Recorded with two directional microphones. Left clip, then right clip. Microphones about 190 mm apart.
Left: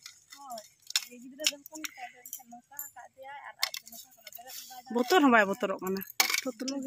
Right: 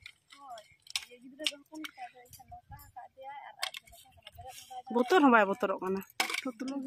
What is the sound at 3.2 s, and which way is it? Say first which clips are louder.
Keys jangling: left 2 dB; 50° left (ahead or behind).